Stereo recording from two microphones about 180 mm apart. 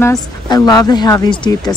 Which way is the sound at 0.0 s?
20° left (ahead or behind).